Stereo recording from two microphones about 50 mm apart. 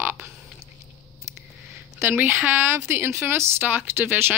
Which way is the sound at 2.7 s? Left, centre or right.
Right.